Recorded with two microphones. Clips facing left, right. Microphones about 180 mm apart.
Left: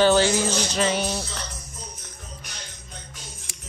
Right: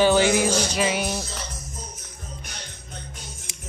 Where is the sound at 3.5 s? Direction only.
20° right (ahead or behind).